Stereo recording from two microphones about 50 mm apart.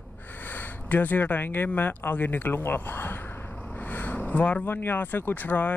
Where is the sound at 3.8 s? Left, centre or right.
Left.